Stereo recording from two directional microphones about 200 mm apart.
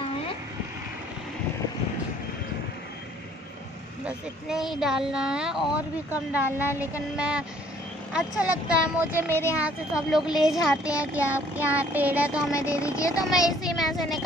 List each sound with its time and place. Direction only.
4.0 s a woman's voice: 5° right (ahead or behind)
6.6 s speech: 15° left (ahead or behind)
7.2 s a woman's voice: 5° right (ahead or behind)
9.3 s speech: 15° left (ahead or behind)
9.6 s a woman's voice: 5° right (ahead or behind)
12.5 s speech: 15° left (ahead or behind)
13.3 s a woman's voice: centre (ahead or behind)